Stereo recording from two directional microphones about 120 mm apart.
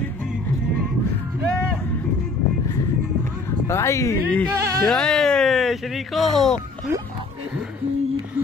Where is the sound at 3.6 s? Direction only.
25° left (ahead or behind).